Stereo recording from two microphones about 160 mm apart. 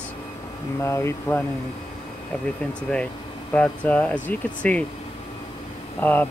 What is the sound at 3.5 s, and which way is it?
Speech, 10° left (ahead or behind).